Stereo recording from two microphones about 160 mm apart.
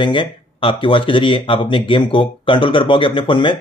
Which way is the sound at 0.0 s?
30° left (ahead or behind).